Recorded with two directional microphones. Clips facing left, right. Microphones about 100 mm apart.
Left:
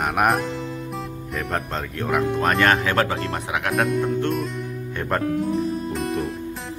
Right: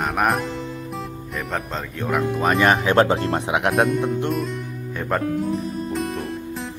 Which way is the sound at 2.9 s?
25° right (ahead or behind).